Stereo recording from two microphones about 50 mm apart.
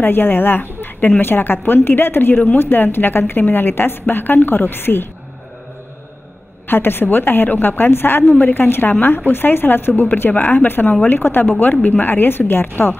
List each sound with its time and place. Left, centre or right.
0.0 s a woman's voice: left
6.7 s a woman's voice: left